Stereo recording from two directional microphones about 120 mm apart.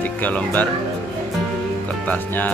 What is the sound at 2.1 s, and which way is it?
Music, 15° left (ahead or behind).